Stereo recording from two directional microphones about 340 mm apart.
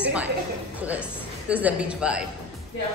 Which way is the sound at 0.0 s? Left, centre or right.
Centre.